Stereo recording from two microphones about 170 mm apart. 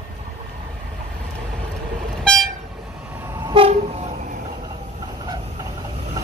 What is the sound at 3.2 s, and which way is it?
Train, 15° right (ahead or behind).